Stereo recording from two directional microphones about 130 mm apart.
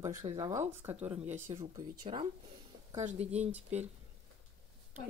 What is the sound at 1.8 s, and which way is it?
Speech, 40° right (ahead or behind).